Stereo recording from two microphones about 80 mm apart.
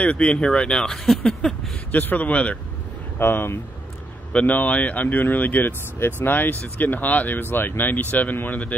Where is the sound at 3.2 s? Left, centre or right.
Left.